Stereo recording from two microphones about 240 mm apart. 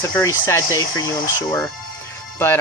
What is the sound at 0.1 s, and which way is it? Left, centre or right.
Speech, centre.